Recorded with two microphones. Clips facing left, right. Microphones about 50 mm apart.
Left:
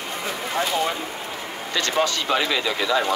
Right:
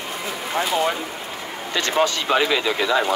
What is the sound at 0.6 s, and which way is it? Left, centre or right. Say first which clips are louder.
Speech: right 2 dB; centre.